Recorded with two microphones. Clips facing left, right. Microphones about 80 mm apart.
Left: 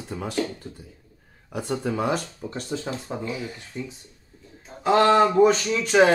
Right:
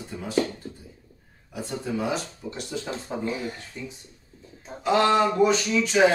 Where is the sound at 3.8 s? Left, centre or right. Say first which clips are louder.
Left 4 dB; left.